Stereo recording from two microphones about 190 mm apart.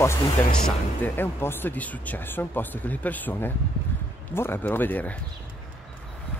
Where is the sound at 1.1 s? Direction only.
10° left (ahead or behind).